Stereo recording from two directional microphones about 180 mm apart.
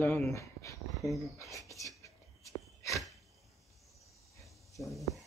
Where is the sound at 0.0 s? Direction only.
10° left (ahead or behind).